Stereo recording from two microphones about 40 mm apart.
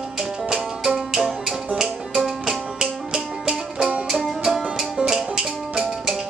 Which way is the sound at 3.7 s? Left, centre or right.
Right.